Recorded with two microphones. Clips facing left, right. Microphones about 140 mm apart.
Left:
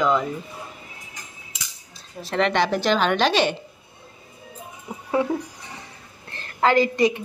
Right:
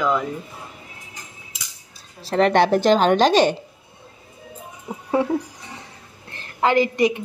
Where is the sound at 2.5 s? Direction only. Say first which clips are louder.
Right 7 dB; 50° right (ahead or behind).